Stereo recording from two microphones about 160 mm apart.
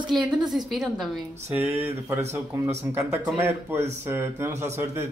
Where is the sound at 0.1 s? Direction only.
Centre (ahead or behind).